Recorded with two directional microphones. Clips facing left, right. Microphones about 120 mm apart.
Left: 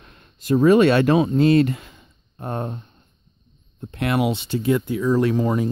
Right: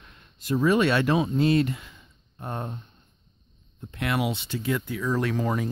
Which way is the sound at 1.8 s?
50° left (ahead or behind).